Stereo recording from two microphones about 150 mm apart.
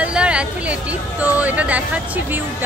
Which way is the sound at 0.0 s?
5° right (ahead or behind).